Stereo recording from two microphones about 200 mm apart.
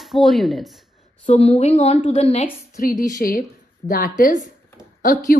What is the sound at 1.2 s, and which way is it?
A woman's voice, 25° left (ahead or behind).